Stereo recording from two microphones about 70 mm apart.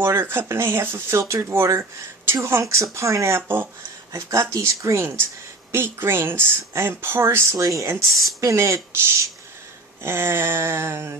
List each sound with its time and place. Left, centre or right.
0.0 s speech: right
4.1 s speech: right
7.5 s speech: right